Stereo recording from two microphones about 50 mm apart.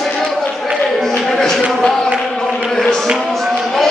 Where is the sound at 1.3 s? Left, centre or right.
Centre.